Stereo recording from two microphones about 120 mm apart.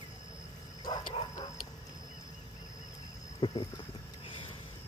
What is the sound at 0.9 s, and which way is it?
Bow-wow, 35° left (ahead or behind).